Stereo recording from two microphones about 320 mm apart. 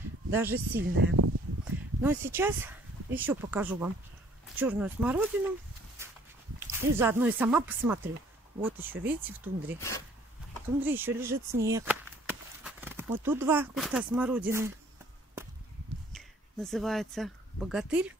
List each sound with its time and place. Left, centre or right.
0.3 s speech: centre
1.2 s a sound: right
2.0 s speech: centre
6.6 s speech: centre
9.8 s speech: centre
10.8 s speech: centre
16.1 s speech: centre